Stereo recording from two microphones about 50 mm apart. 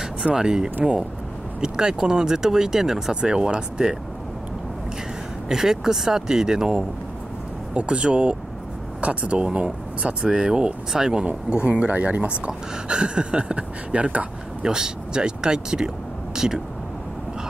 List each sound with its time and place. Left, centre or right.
0.0 s speech: centre
5.5 s speech: centre; by 12.3 s right
12.4 s speech: right